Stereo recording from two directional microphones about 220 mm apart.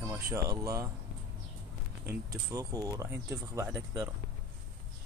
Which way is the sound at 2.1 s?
15° right (ahead or behind).